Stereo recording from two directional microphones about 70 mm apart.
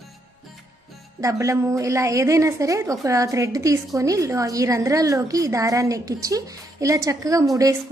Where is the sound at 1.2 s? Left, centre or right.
Right.